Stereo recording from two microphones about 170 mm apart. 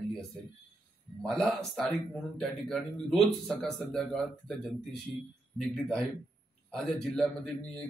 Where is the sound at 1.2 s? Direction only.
5° left (ahead or behind).